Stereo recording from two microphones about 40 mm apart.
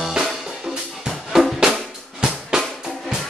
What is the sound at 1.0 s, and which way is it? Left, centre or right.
Drum, centre.